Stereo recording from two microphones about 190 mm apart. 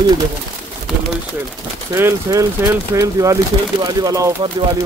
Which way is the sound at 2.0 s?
15° right (ahead or behind).